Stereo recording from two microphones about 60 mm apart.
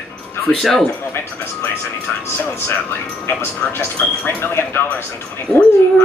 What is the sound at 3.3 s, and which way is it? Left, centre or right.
A man's voice, left.